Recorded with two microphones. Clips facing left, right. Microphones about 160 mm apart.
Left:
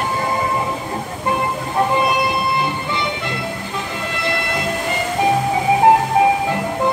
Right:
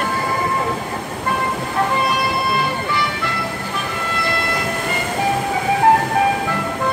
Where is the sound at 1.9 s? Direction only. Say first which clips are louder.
Left 2 dB; 20° left (ahead or behind).